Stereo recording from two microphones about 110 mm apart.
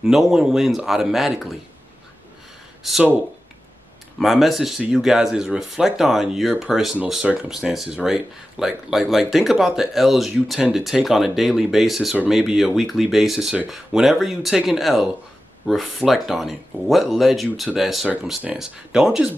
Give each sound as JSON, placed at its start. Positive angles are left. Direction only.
{"t": 0.0, "sound": "speech", "side_deg": -5}
{"t": 2.8, "sound": "speech", "side_deg": 0}
{"t": 4.2, "sound": "speech", "side_deg": 0}